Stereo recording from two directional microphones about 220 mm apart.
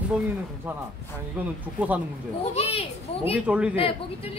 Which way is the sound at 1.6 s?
5° right (ahead or behind).